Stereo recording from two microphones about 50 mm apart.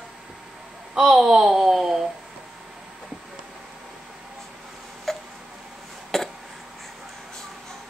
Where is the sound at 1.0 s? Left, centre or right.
Centre.